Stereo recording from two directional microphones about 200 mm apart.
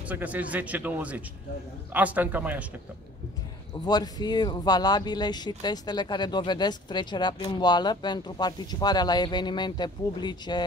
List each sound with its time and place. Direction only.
0.1 s speech: 5° right (ahead or behind)
3.8 s speech: 20° left (ahead or behind)